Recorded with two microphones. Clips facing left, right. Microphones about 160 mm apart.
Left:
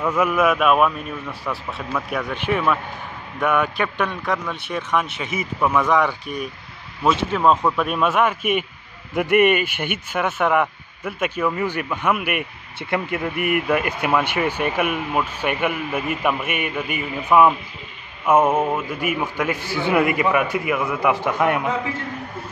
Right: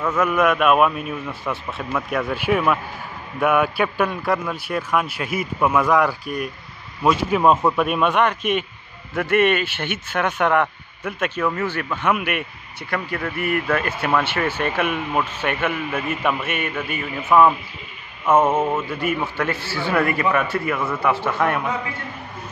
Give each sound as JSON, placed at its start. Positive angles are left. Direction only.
{"t": 0.0, "sound": "a man's voice", "side_deg": 10}
{"t": 12.9, "sound": "speech", "side_deg": 20}